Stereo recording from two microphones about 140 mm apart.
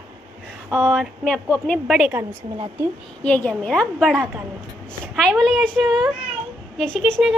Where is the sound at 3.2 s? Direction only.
10° left (ahead or behind).